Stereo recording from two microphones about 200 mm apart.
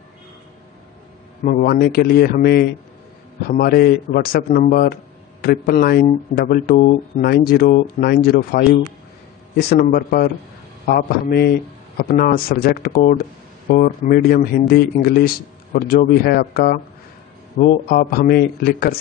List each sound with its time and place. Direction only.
1.4 s speech: 45° left (ahead or behind)